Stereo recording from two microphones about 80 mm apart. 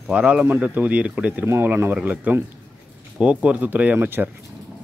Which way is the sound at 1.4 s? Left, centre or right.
Right.